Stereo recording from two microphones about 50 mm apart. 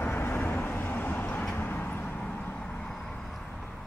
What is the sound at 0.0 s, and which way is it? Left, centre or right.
Vehicle, left.